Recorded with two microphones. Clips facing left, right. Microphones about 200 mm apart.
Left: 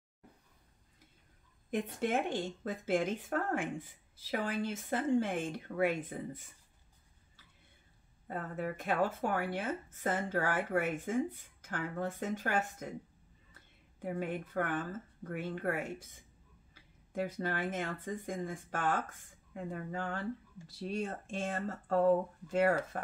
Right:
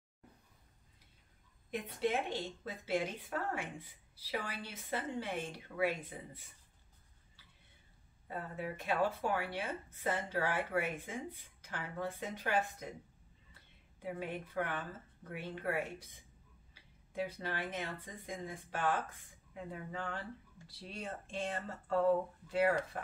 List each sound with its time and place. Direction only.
1.7 s speech: 50° left (ahead or behind)
8.3 s speech: 50° left (ahead or behind)
14.0 s speech: 50° left (ahead or behind)
17.1 s speech: 50° left (ahead or behind)